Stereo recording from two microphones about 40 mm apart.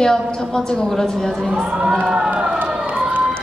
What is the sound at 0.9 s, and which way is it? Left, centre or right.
Speech, centre.